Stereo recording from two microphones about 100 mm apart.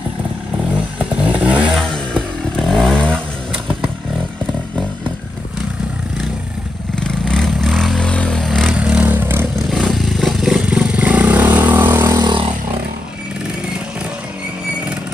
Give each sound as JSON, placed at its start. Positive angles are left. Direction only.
{"t": 1.4, "sound": "vehicle", "side_deg": -10}
{"t": 1.8, "sound": "vehicle", "side_deg": 5}
{"t": 7.0, "sound": "vehicle", "side_deg": 5}
{"t": 8.7, "sound": "vehicle", "side_deg": -10}
{"t": 9.6, "sound": "vehicle", "side_deg": 0}
{"t": 12.2, "sound": "vehicle", "side_deg": -50}